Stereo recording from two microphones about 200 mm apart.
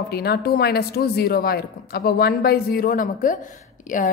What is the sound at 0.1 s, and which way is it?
A woman's voice, 50° left (ahead or behind).